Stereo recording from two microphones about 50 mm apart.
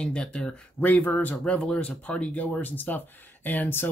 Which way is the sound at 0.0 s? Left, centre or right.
Centre.